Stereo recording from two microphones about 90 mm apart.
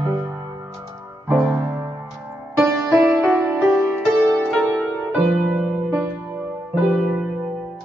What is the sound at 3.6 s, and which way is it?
Music, centre (ahead or behind).